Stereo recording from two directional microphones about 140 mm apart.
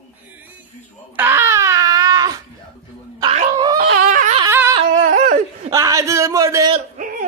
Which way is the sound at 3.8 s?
75° right (ahead or behind).